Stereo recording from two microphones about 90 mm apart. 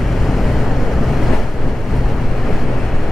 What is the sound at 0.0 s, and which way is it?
Waves, centre (ahead or behind).